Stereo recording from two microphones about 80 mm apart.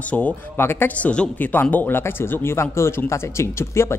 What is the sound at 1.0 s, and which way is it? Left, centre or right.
Speech, centre.